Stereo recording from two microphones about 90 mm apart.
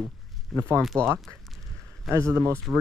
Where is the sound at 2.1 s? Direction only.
35° right (ahead or behind).